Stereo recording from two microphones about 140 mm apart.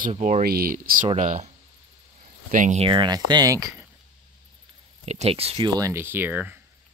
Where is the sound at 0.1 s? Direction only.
60° right (ahead or behind); by 0.9 s 90° right.